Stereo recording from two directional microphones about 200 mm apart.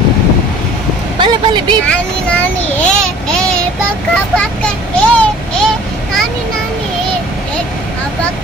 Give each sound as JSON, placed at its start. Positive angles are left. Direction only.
{"t": 1.1, "sound": "vehicle", "side_deg": -20}
{"t": 1.9, "sound": "a child's voice", "side_deg": 5}